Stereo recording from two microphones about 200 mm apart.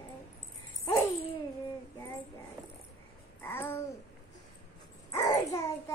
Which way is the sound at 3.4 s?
10° left (ahead or behind).